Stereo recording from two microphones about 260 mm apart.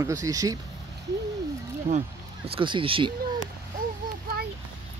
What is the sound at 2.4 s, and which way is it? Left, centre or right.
Speech, centre.